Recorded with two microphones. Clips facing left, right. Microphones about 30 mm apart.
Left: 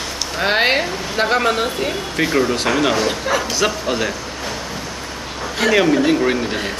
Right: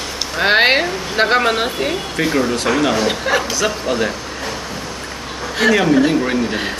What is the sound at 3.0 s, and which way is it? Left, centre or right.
Speech, centre.